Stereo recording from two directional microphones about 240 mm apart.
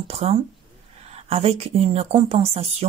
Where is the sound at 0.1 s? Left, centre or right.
Right.